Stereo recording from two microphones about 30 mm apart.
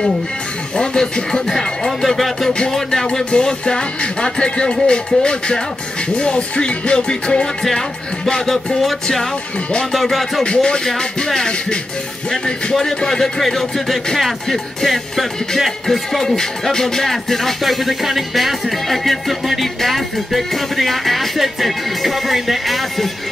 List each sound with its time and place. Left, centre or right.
2.0 s music: centre
2.7 s music: centre
3.3 s music: left
9.9 s music: centre
10.4 s music: left
13.5 s music: centre